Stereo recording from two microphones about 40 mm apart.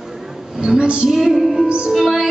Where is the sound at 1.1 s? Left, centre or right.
Centre.